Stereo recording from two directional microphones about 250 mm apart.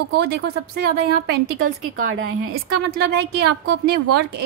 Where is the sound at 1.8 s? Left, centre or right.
Right.